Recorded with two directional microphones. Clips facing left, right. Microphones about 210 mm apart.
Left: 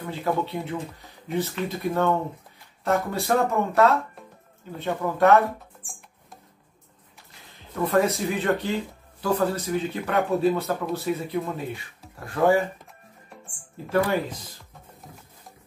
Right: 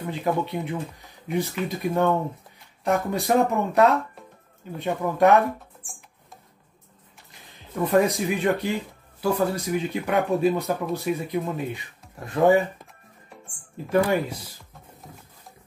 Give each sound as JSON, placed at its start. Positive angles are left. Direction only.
{"t": 0.0, "sound": "speech", "side_deg": -15}
{"t": 7.8, "sound": "speech", "side_deg": -15}
{"t": 13.8, "sound": "speech", "side_deg": -10}